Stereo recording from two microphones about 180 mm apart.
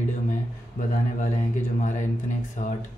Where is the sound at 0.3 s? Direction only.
45° left (ahead or behind).